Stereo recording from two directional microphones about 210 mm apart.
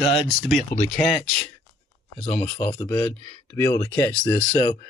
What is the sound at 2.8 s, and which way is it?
Speech, 10° left (ahead or behind).